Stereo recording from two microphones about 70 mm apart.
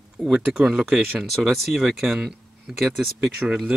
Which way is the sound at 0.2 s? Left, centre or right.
Centre.